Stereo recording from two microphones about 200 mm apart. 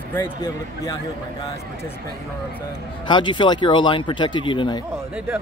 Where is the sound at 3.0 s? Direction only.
25° left (ahead or behind).